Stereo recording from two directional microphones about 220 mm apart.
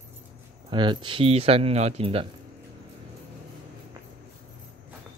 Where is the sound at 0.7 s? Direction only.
20° right (ahead or behind).